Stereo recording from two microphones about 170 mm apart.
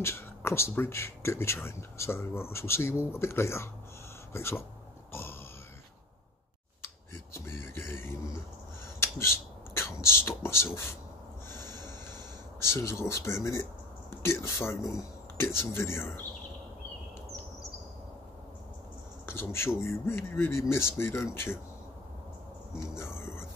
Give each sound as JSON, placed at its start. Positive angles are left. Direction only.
{"t": 0.0, "sound": "speech", "side_deg": 15}
{"t": 7.3, "sound": "a sound", "side_deg": 15}
{"t": 9.8, "sound": "speech", "side_deg": 15}
{"t": 11.5, "sound": "snort", "side_deg": 15}
{"t": 12.5, "sound": "speech", "side_deg": 15}
{"t": 19.2, "sound": "speech", "side_deg": 15}
{"t": 22.9, "sound": "speech", "side_deg": 15}